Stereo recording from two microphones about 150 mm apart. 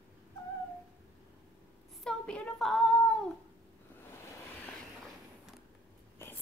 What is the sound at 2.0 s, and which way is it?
Child singing, 5° left (ahead or behind).